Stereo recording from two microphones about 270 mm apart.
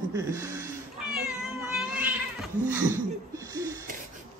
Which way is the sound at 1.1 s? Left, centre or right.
Centre.